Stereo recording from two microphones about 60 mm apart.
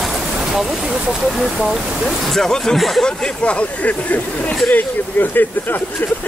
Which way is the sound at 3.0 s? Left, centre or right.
Left.